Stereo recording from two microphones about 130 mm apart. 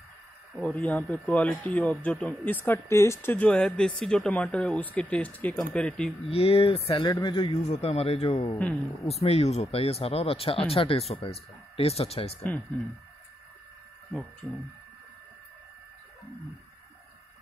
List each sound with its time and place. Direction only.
0.6 s speech: 10° left (ahead or behind)
6.2 s speech: 50° left (ahead or behind)
7.1 s speech: 35° left (ahead or behind)
7.6 s speech: 55° left (ahead or behind)